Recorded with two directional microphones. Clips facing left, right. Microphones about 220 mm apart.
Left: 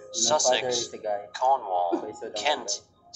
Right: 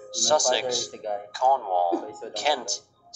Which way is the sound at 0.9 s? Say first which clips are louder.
Left 1 dB; 5° left (ahead or behind).